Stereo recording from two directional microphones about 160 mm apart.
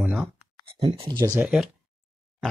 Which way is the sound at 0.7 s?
35° right (ahead or behind).